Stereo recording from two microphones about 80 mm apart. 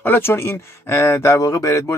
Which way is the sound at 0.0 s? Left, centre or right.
Left.